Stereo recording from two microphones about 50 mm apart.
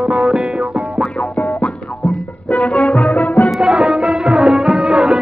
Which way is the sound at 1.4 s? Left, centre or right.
Left.